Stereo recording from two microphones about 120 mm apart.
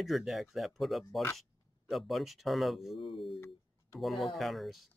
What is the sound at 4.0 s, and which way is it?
Speech, centre (ahead or behind).